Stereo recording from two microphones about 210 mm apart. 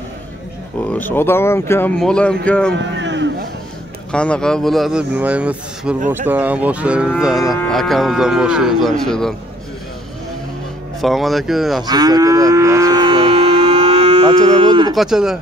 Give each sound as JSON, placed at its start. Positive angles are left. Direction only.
{"t": 0.8, "sound": "speech", "side_deg": 10}
{"t": 2.8, "sound": "a sound", "side_deg": -60}
{"t": 4.1, "sound": "speech", "side_deg": 5}
{"t": 11.0, "sound": "speech", "side_deg": 0}
{"t": 11.8, "sound": "livestock", "side_deg": -20}
{"t": 15.0, "sound": "speech", "side_deg": 0}